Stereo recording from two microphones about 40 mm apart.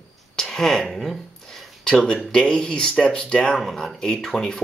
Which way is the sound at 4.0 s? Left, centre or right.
Centre.